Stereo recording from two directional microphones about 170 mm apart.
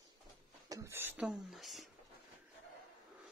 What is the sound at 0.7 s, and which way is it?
Speech, 15° right (ahead or behind).